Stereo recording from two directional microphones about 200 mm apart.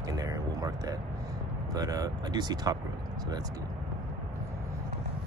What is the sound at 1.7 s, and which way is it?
Speech, 15° right (ahead or behind).